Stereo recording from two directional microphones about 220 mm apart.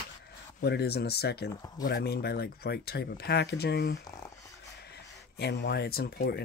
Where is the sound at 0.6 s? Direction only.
50° left (ahead or behind).